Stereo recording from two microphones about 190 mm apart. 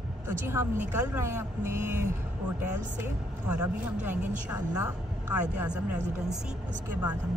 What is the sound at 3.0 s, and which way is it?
Speech, 5° right (ahead or behind).